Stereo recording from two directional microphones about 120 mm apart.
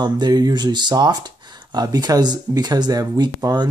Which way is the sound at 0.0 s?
35° right (ahead or behind).